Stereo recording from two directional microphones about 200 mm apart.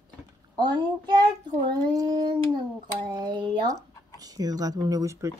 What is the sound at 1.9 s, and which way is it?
A woman's voice, 20° right (ahead or behind).